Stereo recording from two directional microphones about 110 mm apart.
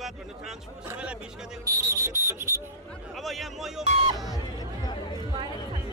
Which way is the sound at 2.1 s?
20° right (ahead or behind).